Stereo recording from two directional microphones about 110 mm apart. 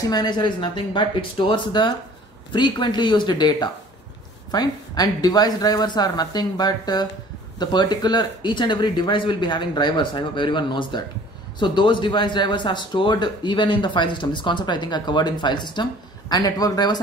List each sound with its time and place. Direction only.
0.1 s speech: 40° left (ahead or behind)